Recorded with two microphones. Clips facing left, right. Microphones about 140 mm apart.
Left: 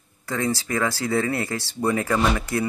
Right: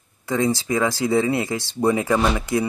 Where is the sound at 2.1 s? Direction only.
5° right (ahead or behind).